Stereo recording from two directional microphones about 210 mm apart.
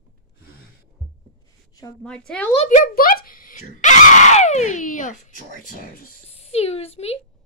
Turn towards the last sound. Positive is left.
turn(degrees=30)  # may be behind; listen again after turning